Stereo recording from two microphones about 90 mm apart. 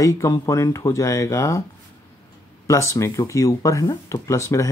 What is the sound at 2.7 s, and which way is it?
Speech, 35° left (ahead or behind).